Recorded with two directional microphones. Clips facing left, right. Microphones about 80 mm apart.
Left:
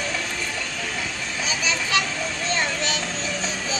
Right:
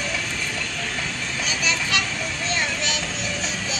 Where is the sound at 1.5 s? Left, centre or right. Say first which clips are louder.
Left 1 dB; left.